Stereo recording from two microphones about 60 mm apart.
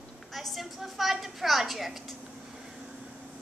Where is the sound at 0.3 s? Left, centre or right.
Centre.